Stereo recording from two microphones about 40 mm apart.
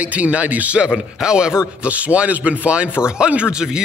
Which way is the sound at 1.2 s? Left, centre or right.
Centre.